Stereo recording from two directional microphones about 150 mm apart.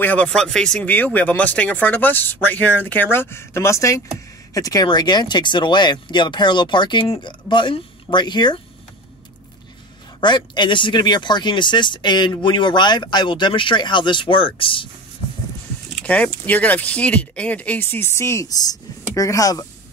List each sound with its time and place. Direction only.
0.0 s speech: 10° left (ahead or behind); by 8.5 s 30° left (ahead or behind)
10.2 s speech: 30° left (ahead or behind)
15.9 s speech: 10° left (ahead or behind); by 19.6 s 25° left (ahead or behind)